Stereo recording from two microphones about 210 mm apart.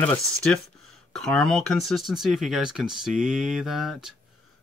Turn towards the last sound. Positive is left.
turn(degrees=0)  # may be behind; listen again after turning